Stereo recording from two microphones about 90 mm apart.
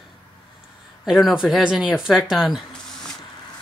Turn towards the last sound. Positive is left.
turn(degrees=0)  # may be behind; listen again after turning